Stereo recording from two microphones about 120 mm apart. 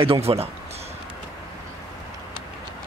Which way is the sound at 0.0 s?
50° right (ahead or behind).